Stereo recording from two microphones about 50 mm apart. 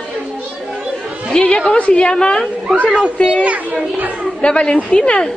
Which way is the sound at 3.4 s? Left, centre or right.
Right.